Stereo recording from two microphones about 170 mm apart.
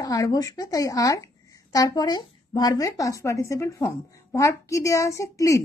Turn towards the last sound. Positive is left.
turn(degrees=20)  # may be behind; listen again after turning